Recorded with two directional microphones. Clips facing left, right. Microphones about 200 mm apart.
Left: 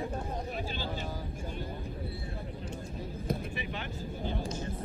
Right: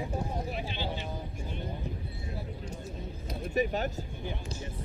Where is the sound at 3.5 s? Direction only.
40° right (ahead or behind).